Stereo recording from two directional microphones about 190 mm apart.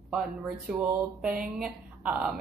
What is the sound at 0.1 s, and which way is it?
A woman's voice, 5° right (ahead or behind).